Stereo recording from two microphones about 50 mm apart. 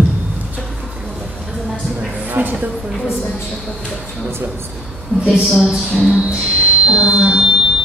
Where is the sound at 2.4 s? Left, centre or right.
Right.